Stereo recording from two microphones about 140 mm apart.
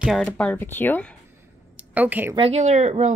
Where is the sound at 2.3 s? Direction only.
45° right (ahead or behind).